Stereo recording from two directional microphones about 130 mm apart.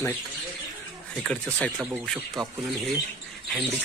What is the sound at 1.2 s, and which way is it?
Speech, 5° left (ahead or behind).